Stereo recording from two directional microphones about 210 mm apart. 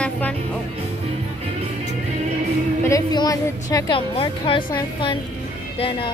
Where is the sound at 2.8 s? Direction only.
15° left (ahead or behind).